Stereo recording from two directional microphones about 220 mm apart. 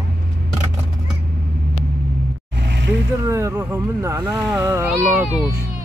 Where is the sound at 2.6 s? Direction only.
50° right (ahead or behind).